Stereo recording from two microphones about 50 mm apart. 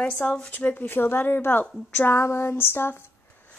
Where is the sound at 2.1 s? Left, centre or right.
Left.